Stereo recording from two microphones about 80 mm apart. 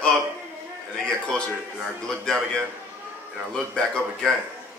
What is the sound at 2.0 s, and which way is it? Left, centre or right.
Speech, centre.